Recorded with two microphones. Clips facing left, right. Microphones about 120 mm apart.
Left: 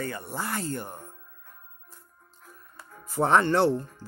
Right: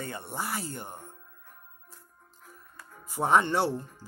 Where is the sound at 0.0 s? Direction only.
20° right (ahead or behind).